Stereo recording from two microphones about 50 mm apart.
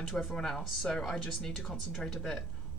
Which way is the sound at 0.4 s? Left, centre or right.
Centre.